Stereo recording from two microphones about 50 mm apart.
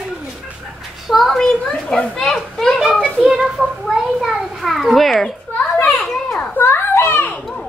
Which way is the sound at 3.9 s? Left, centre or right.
Centre.